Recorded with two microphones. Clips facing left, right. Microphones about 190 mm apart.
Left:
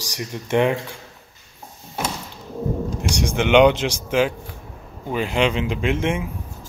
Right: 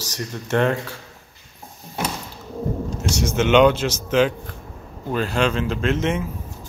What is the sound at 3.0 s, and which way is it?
Speech, 15° left (ahead or behind).